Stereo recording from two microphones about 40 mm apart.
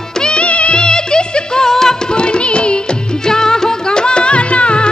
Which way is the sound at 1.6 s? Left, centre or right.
Centre.